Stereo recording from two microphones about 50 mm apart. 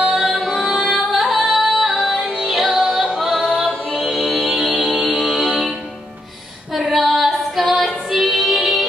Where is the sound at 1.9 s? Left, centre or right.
Centre.